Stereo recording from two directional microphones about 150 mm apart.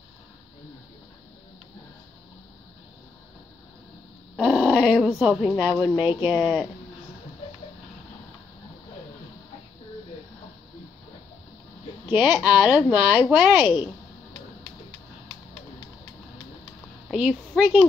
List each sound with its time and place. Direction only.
4.4 s speech: 5° right (ahead or behind)
12.1 s speech: 5° right (ahead or behind)
17.1 s a woman's voice: 5° right (ahead or behind)